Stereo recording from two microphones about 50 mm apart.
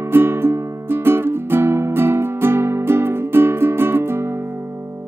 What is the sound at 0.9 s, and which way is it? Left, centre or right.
Music, right.